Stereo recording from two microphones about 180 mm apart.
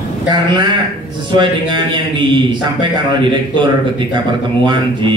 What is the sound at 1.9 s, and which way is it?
A man's voice, 25° right (ahead or behind).